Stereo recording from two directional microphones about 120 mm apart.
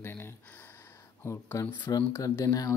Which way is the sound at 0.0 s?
20° left (ahead or behind).